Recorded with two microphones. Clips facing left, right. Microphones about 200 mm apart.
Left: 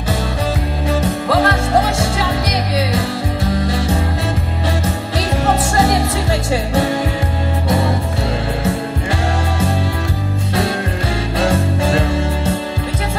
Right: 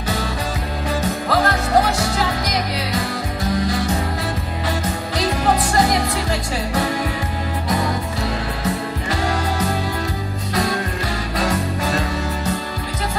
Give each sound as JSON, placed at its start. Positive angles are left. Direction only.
{"t": 1.0, "sound": "music", "side_deg": 25}
{"t": 3.6, "sound": "music", "side_deg": 25}
{"t": 5.8, "sound": "music", "side_deg": 25}
{"t": 7.6, "sound": "music", "side_deg": 25}
{"t": 11.3, "sound": "music", "side_deg": 25}